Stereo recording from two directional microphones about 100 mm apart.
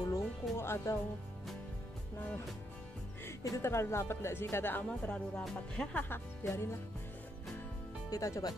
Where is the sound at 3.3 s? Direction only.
30° left (ahead or behind).